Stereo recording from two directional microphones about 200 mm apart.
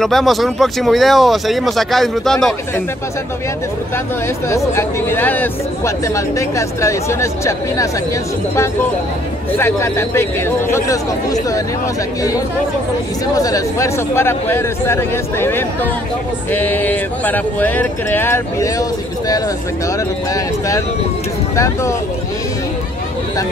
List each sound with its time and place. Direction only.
0.0 s speech: centre (ahead or behind)
4.5 s speech: 15° left (ahead or behind)
9.6 s speech: 10° left (ahead or behind)
13.4 s speech: 15° left (ahead or behind)